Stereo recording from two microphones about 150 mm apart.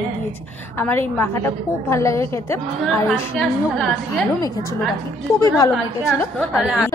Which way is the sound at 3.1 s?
Centre (ahead or behind).